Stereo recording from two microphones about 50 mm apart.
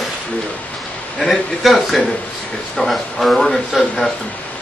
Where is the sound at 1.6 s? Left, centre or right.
Centre.